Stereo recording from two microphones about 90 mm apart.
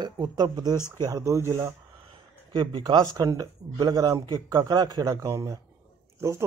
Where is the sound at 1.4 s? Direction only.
30° right (ahead or behind).